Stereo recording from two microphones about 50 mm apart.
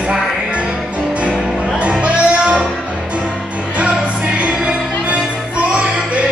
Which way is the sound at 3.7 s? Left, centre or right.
Right.